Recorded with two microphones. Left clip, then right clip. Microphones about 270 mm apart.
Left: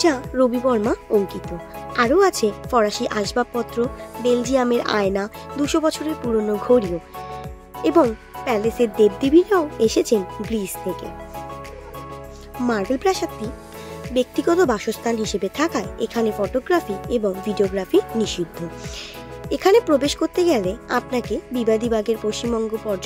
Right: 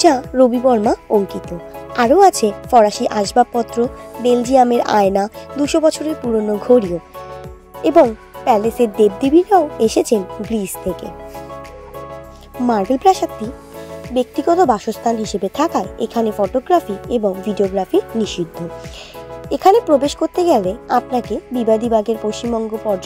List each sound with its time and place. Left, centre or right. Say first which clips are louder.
0.0 s a woman's voice: right 6 dB; centre
12.9 s a woman's voice: right 7 dB; centre
19.5 s a woman's voice: right 4 dB; centre